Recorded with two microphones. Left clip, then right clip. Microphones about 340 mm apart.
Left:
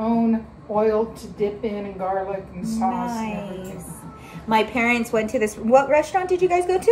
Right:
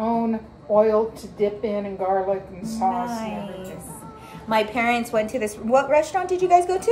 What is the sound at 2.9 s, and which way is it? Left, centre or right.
A woman's voice, centre.